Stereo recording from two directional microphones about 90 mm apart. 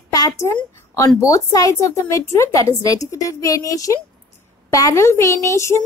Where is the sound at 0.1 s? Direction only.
40° left (ahead or behind).